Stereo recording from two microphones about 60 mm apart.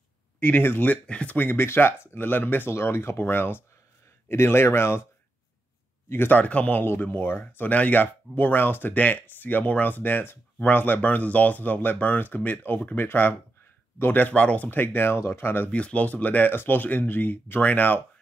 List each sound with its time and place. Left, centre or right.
0.4 s speech: left
1.0 s speech: centre
1.3 s speech: left
2.1 s speech: left
2.7 s speech: left
6.0 s speech: left
6.4 s speech: left
6.8 s speech: left
14.7 s speech: left
15.7 s speech: left